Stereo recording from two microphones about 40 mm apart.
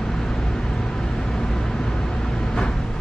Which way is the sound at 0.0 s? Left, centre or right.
Centre.